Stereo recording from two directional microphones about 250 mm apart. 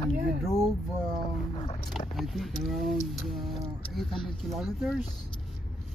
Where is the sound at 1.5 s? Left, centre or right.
Left.